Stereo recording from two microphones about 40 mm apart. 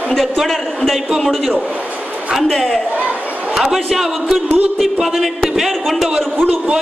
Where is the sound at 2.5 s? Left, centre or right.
Centre.